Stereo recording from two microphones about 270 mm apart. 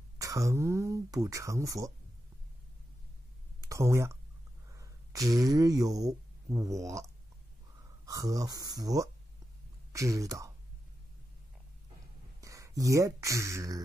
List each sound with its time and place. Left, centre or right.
0.2 s speech: centre
3.6 s speech: centre
12.4 s speech: centre